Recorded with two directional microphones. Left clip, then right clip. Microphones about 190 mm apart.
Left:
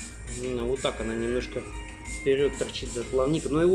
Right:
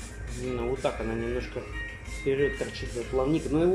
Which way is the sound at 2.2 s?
Centre (ahead or behind).